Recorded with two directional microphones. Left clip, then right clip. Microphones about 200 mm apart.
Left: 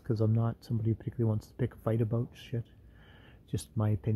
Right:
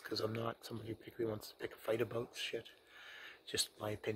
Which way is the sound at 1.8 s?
10° left (ahead or behind).